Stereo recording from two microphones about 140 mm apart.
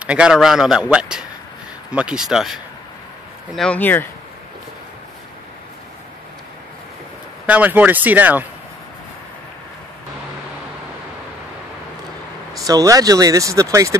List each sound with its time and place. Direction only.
0.0 s a man's voice: 5° right (ahead or behind)
3.5 s speech: 10° left (ahead or behind)
7.4 s speech: 10° right (ahead or behind)
12.5 s speech: 25° right (ahead or behind)